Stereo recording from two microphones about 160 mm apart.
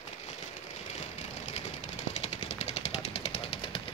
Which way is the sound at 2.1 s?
40° left (ahead or behind).